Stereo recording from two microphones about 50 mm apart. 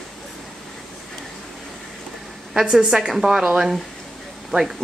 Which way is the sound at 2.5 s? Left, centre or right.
Centre.